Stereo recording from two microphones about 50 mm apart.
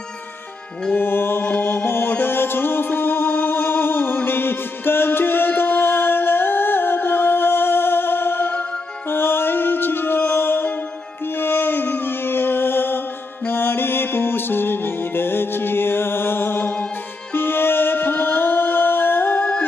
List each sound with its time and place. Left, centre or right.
0.9 s music: left